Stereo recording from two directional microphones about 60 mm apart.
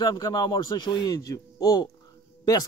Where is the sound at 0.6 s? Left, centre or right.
Left.